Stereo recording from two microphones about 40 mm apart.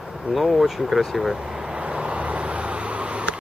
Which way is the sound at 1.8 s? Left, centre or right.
Right.